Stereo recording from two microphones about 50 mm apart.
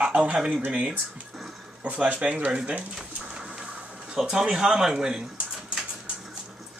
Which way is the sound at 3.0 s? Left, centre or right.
Centre.